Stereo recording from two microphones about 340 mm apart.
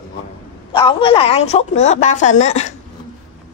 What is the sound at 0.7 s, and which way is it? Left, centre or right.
Speech, centre.